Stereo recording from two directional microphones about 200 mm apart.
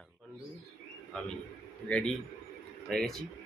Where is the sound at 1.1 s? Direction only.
5° left (ahead or behind).